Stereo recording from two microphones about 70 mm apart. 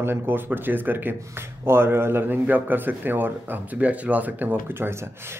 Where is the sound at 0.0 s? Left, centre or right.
Right.